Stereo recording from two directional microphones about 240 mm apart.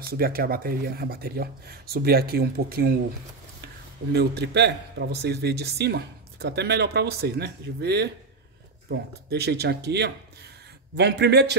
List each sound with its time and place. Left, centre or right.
0.1 s speech: right
4.1 s a man's voice: right